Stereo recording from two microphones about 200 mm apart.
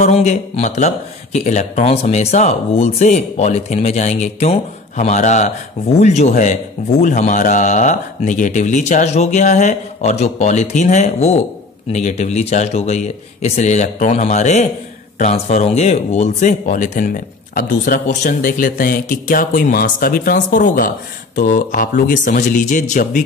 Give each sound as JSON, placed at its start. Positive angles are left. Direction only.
{"t": 0.0, "sound": "speech", "side_deg": 35}